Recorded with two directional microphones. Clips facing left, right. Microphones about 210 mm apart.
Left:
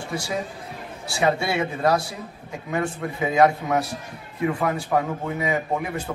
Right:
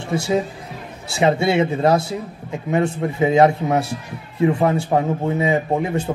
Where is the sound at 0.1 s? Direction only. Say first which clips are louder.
Right 9 dB; 25° right (ahead or behind).